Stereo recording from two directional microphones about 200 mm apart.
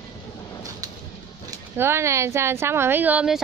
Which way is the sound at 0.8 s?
20° right (ahead or behind).